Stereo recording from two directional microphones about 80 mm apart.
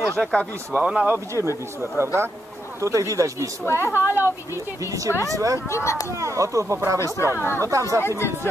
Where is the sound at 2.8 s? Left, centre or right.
Right.